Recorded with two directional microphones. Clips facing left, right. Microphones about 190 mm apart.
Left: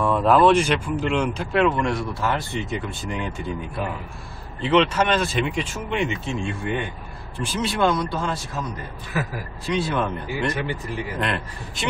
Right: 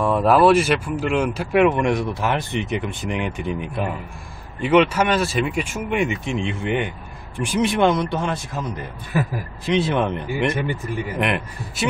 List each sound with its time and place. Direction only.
0.0 s speech: 10° right (ahead or behind)
9.7 s speech: 20° right (ahead or behind)